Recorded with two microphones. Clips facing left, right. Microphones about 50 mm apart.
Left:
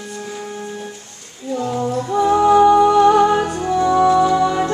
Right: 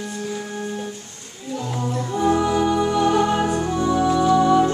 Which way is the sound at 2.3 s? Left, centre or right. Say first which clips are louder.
Left 11 dB; left.